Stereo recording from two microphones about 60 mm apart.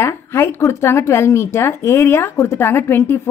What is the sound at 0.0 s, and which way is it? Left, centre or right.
A woman's voice, left.